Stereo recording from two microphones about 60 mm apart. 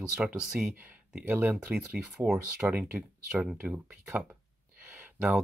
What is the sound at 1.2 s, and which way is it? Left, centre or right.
Speech, right.